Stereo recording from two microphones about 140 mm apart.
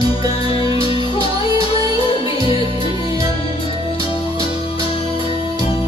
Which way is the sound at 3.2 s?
45° left (ahead or behind).